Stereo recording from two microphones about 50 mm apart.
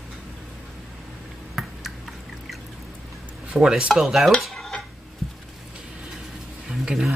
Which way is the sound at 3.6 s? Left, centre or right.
Centre.